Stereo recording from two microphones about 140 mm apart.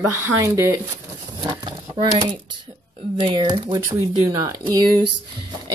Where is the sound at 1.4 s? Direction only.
30° right (ahead or behind).